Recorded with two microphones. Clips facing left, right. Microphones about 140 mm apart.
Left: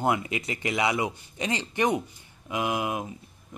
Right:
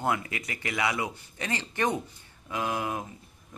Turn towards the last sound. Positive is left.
turn(degrees=15)  # may be behind; listen again after turning